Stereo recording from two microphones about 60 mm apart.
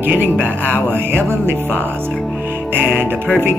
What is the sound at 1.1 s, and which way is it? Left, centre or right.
Music, right.